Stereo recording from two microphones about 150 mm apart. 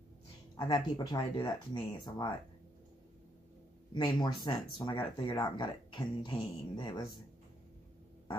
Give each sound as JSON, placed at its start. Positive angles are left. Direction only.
{"t": 0.6, "sound": "speech", "side_deg": 30}
{"t": 3.9, "sound": "speech", "side_deg": 30}